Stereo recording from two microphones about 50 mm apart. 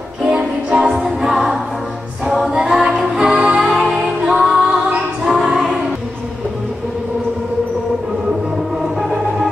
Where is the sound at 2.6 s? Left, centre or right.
Centre; by 5.0 s right.